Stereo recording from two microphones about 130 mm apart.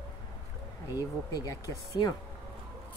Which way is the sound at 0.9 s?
30° left (ahead or behind).